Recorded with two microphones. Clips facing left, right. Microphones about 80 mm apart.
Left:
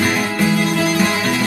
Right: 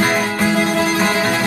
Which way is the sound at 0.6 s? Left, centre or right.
Right.